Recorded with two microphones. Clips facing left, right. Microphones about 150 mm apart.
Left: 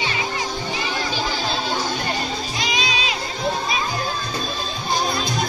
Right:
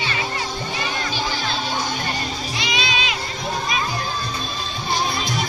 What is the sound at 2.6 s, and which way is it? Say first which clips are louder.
Music: even; 40° left (ahead or behind).